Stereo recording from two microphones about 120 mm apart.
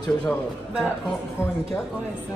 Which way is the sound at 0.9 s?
15° left (ahead or behind).